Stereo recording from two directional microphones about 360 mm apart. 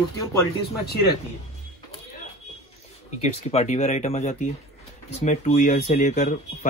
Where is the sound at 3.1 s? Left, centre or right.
Centre.